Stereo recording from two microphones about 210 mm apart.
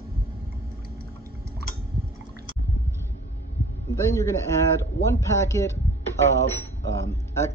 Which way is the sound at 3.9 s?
15° left (ahead or behind).